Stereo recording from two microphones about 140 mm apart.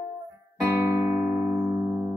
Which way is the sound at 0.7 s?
15° right (ahead or behind).